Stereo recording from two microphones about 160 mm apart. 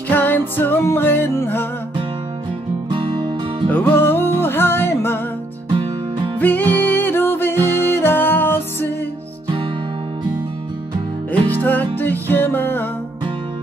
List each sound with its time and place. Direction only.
0.1 s music: 10° left (ahead or behind)
2.9 s music: 30° right (ahead or behind)
3.6 s music: 10° left (ahead or behind)
5.7 s music: 30° right (ahead or behind)
6.4 s music: 10° left (ahead or behind)
11.4 s music: 10° left (ahead or behind)